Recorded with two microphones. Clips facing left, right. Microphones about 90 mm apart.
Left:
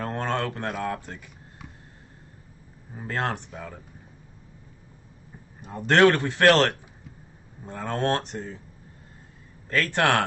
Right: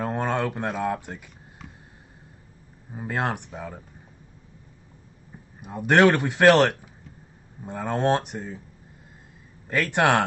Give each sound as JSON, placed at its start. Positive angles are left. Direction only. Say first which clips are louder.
{"t": 0.0, "sound": "a sound", "louder": "right 2 dB", "side_deg": -15}
{"t": 0.7, "sound": "a man's voice", "louder": "right 3 dB", "side_deg": -10}
{"t": 2.9, "sound": "a man's voice", "louder": "right 1 dB", "side_deg": -15}
{"t": 5.6, "sound": "a man's voice", "louder": "even", "side_deg": -10}
{"t": 9.7, "sound": "a man's voice", "louder": "right 2 dB", "side_deg": -15}